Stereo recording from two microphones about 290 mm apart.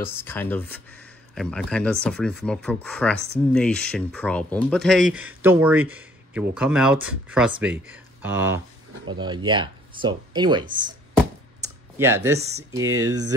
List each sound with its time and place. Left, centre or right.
0.0 s speech: centre
11.6 s a sound: centre
12.4 s speech: right
12.8 s speech: right